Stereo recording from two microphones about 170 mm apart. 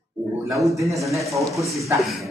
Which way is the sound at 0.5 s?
20° right (ahead or behind).